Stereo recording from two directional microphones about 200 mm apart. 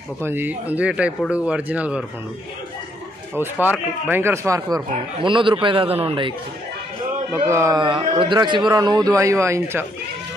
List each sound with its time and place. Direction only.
0.2 s speech: 10° right (ahead or behind)
3.3 s speech: 10° right (ahead or behind); by 6.3 s 25° right (ahead or behind)
7.4 s speech: 15° right (ahead or behind)